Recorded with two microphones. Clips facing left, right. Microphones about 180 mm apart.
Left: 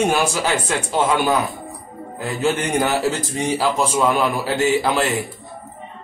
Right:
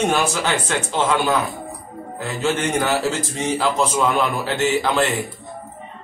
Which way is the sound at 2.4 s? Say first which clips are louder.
Left 1 dB; 15° left (ahead or behind).